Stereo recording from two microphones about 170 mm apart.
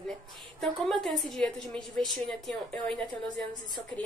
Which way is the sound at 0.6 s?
Centre (ahead or behind).